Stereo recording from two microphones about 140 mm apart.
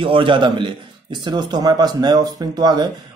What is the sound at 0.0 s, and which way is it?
Speech, 35° right (ahead or behind).